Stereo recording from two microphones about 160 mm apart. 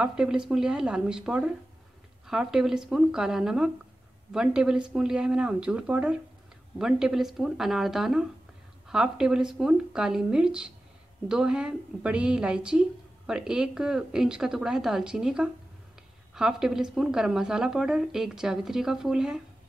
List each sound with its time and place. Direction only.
0.0 s a woman's voice: 5° right (ahead or behind)